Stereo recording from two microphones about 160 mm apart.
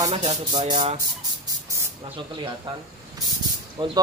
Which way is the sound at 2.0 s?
30° right (ahead or behind).